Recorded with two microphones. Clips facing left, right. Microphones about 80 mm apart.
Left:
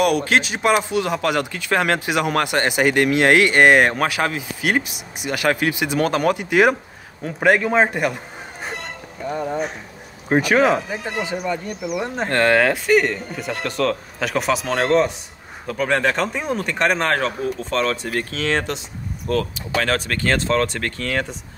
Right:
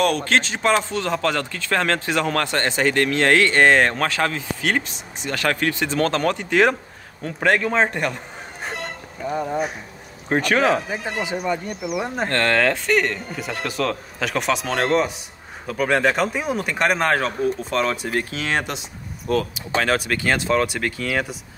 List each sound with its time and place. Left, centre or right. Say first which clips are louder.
0.0 s speech: left 2 dB; centre
9.2 s speech: even; centre
10.9 s speech: even; centre
12.3 s a man's voice: left 4 dB; centre